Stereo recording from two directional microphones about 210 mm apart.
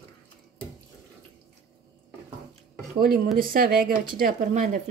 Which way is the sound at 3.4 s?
45° right (ahead or behind).